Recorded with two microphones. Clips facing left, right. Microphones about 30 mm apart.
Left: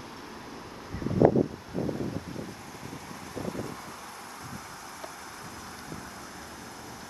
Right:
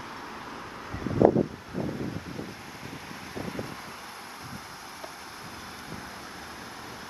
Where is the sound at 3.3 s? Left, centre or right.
Right.